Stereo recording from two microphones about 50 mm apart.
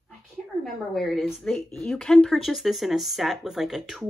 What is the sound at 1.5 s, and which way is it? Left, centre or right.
Speech, centre.